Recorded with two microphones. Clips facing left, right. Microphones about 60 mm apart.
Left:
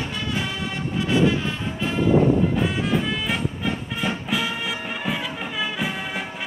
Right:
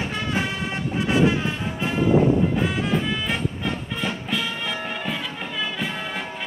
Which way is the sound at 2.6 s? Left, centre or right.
Centre.